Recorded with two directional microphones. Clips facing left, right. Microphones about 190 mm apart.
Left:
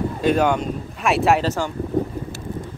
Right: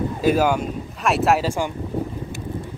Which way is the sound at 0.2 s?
5° right (ahead or behind).